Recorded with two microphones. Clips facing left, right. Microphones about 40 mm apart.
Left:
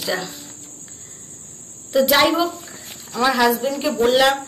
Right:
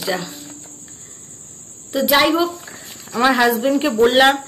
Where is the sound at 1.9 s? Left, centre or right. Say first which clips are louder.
Even; centre.